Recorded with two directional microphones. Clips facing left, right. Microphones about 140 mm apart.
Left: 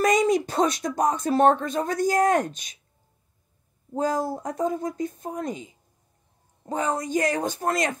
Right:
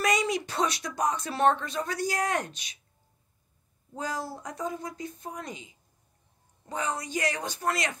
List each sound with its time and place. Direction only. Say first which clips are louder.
0.0 s speech: left 7 dB; 45° left (ahead or behind)
3.9 s speech: left 9 dB; 45° left (ahead or behind)